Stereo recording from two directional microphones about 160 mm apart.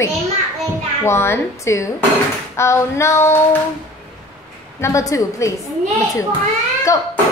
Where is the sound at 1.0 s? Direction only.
15° left (ahead or behind).